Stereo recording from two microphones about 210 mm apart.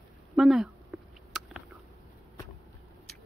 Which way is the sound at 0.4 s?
Centre (ahead or behind).